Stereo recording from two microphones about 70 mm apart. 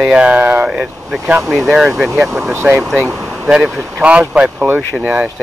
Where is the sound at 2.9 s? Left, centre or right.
Centre.